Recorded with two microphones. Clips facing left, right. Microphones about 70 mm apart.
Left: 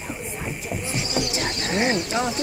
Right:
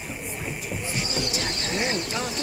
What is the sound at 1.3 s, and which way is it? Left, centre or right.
Horse, left.